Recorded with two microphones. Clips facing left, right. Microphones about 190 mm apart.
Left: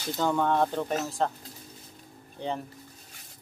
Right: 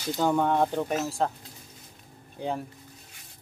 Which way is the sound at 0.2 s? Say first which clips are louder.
Right 1 dB; 15° right (ahead or behind).